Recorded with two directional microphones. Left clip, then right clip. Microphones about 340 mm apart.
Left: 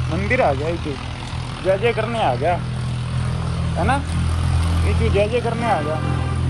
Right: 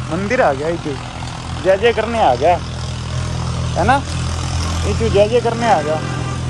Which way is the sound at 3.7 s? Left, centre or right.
Centre.